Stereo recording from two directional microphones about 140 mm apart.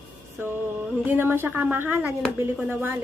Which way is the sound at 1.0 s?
15° right (ahead or behind).